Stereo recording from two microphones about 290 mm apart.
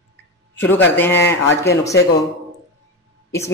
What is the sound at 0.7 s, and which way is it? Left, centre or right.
Speech, centre.